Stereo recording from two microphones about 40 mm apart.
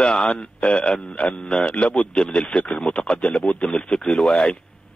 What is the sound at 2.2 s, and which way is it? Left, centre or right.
Speech, centre.